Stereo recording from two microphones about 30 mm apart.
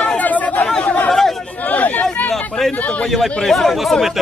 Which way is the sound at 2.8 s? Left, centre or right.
Left.